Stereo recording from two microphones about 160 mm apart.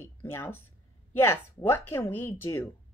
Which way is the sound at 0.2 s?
15° left (ahead or behind).